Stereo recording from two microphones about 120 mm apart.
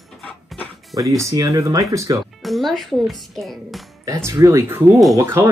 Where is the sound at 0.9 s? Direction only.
30° right (ahead or behind).